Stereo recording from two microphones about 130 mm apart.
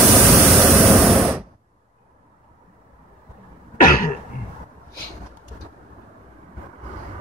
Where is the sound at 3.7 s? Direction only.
90° left.